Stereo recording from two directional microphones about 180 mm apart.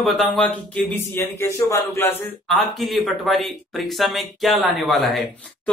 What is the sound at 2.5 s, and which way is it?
A man's voice, centre (ahead or behind).